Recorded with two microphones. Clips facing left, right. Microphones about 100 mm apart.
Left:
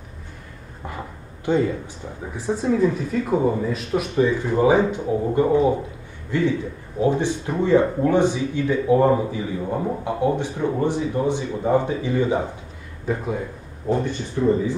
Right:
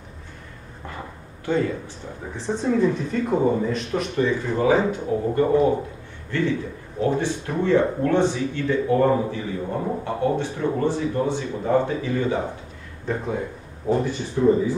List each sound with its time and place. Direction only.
1.4 s speech: 15° left (ahead or behind)
2.3 s speech: 5° left (ahead or behind)
13.0 s speech: 5° left (ahead or behind)